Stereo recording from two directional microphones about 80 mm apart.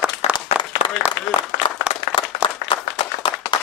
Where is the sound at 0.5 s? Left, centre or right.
Centre.